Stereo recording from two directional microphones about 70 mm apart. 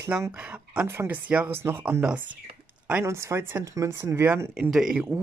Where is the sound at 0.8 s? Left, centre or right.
Right.